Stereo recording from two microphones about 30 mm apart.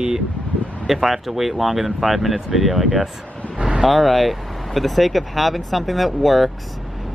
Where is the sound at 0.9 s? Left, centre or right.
Centre.